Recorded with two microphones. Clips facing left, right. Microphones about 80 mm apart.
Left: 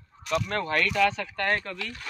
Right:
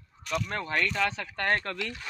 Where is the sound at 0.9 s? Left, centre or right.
Right.